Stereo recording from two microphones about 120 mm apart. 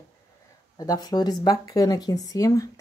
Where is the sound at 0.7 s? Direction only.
35° left (ahead or behind).